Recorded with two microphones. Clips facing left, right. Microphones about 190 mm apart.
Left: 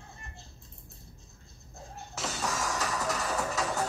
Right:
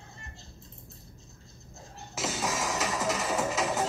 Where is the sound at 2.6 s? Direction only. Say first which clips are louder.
Right 3 dB; 20° right (ahead or behind).